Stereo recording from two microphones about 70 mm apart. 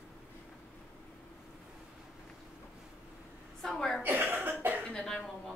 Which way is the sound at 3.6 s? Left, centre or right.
Centre.